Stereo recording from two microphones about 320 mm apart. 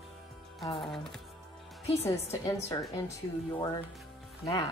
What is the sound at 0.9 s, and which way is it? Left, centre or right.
A woman's voice, centre.